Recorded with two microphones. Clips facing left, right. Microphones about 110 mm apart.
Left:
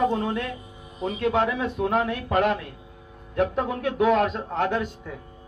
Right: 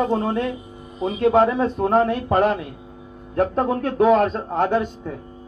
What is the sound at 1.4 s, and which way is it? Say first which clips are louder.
Speech: right 6 dB; 35° right (ahead or behind).